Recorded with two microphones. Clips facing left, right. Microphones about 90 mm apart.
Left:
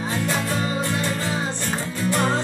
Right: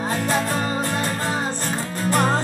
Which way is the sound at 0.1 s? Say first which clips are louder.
Right 2 dB; 45° right (ahead or behind).